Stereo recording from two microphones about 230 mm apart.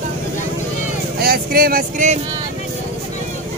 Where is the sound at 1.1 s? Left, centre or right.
Right.